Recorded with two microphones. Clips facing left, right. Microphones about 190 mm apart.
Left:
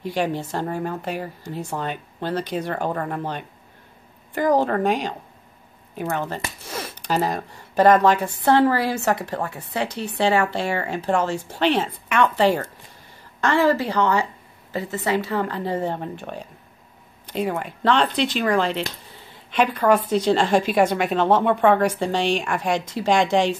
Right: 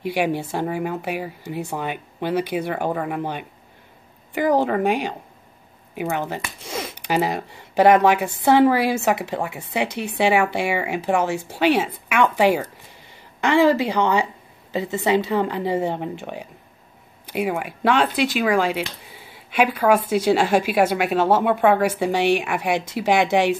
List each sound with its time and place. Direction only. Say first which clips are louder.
0.0 s a woman's voice: right 2 dB; 10° right (ahead or behind)
6.1 s a woman's voice: even; 15° right (ahead or behind)
6.6 s a sound: right 2 dB; 15° right (ahead or behind)
7.1 s a woman's voice: right 1 dB; 10° right (ahead or behind)